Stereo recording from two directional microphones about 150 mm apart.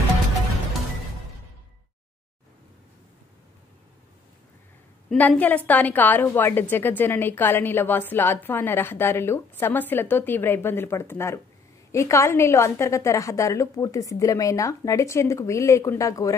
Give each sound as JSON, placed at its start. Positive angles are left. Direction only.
{"t": 5.1, "sound": "a woman's voice", "side_deg": 10}